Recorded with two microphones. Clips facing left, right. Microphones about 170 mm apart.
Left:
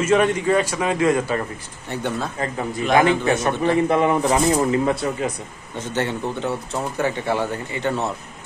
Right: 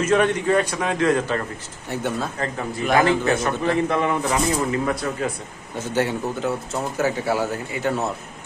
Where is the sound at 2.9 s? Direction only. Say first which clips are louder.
Left 1 dB; 20° left (ahead or behind).